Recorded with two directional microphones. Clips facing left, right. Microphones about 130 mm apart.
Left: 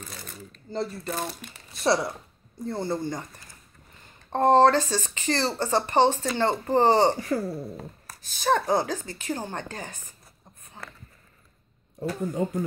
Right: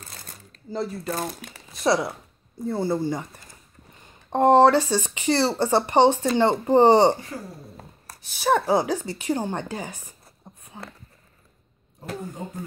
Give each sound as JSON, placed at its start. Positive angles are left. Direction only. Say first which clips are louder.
{"t": 0.7, "sound": "speech", "louder": "right 2 dB", "side_deg": -5}
{"t": 4.3, "sound": "speech", "louder": "right 2 dB", "side_deg": -15}
{"t": 7.2, "sound": "speech", "louder": "left 9 dB", "side_deg": 80}
{"t": 8.2, "sound": "speech", "louder": "right 2 dB", "side_deg": -10}
{"t": 10.6, "sound": "a sound", "louder": "right 3 dB", "side_deg": -15}